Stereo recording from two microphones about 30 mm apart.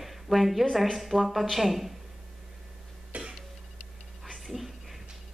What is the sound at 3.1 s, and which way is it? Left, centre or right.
Cough, right.